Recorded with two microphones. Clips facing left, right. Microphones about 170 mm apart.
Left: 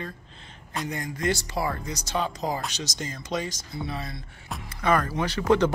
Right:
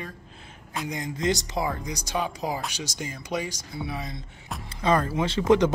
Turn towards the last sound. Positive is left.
turn(degrees=-20)  # may be behind; listen again after turning